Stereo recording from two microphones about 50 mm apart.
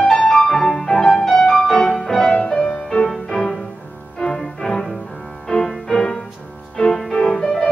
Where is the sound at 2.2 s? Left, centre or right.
Left.